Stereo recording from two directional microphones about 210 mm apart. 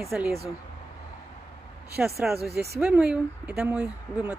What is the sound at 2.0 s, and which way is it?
Speech, 5° right (ahead or behind).